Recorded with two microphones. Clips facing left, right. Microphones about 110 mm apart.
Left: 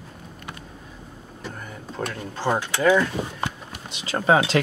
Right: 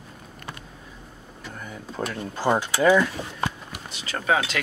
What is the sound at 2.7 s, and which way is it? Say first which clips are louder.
Speech: even; 10° right (ahead or behind).